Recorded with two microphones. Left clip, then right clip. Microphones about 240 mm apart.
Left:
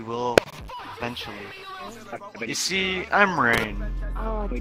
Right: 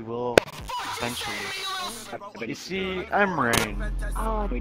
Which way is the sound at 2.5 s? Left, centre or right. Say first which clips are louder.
Left 6 dB; left.